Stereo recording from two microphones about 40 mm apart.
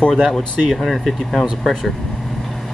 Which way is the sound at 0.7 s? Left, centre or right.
Centre.